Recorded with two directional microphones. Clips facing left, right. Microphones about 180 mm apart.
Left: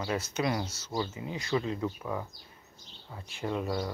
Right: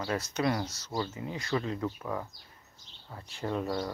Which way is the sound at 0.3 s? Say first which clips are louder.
Right 2 dB; 15° left (ahead or behind).